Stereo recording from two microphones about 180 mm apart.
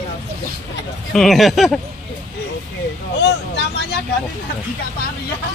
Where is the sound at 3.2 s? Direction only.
70° left (ahead or behind).